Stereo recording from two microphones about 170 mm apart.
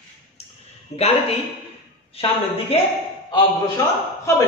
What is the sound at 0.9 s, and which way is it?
Speech, 35° left (ahead or behind).